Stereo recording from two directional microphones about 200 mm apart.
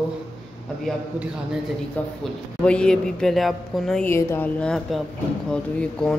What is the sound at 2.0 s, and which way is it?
A man's voice, 5° left (ahead or behind).